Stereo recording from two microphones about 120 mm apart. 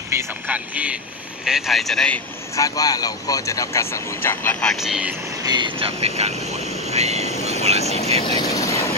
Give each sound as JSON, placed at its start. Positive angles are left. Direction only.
{"t": 0.5, "sound": "speech", "side_deg": -10}
{"t": 2.5, "sound": "speech", "side_deg": 30}
{"t": 4.6, "sound": "speech", "side_deg": 0}
{"t": 5.4, "sound": "speech", "side_deg": -35}
{"t": 5.8, "sound": "speech", "side_deg": -55}
{"t": 7.8, "sound": "speech", "side_deg": 60}
{"t": 8.2, "sound": "speech", "side_deg": 35}